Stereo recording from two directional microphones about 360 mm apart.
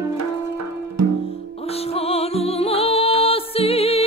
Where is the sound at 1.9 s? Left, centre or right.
Centre.